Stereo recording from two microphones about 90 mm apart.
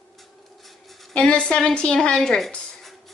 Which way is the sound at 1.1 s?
10° left (ahead or behind).